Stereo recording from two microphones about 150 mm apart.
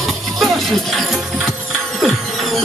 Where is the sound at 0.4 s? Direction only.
Centre (ahead or behind).